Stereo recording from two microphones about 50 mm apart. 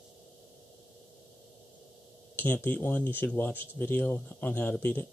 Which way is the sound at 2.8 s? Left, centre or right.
Left.